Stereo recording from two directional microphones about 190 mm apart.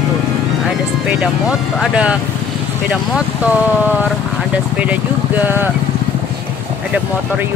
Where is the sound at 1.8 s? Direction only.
5° right (ahead or behind).